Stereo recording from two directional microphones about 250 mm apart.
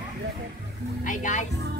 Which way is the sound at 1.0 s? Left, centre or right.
Left.